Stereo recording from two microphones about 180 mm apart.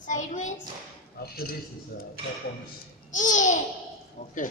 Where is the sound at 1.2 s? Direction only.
60° left (ahead or behind).